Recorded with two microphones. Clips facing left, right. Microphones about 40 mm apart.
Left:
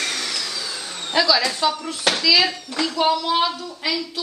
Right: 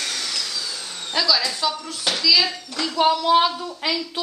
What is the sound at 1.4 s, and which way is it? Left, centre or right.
Speech, left.